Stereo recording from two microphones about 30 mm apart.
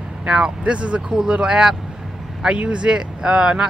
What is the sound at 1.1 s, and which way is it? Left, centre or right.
Speech, right.